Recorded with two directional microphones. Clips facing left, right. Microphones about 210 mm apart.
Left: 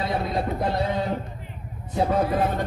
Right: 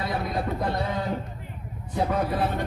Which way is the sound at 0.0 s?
25° left (ahead or behind).